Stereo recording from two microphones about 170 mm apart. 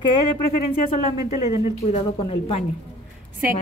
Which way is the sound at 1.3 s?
35° left (ahead or behind).